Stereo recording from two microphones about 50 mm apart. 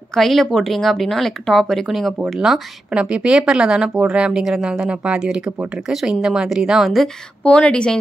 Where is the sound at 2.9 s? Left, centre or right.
Right.